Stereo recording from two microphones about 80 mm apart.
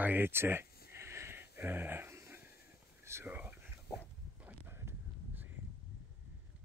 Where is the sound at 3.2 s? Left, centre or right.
Right.